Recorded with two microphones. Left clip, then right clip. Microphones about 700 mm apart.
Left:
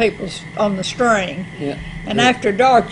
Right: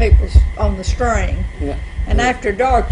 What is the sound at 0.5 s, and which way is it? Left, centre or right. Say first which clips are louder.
Speech: left 4 dB; left.